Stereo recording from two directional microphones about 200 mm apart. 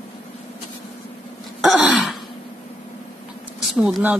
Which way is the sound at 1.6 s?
Centre (ahead or behind).